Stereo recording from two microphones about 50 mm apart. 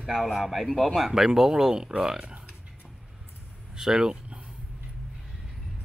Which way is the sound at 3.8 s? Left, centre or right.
Centre.